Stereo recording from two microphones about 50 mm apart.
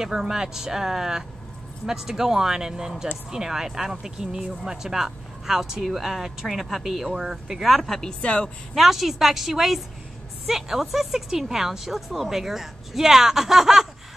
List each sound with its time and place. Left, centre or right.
0.0 s a woman's voice: centre
8.2 s speech: left
8.7 s a woman's voice: centre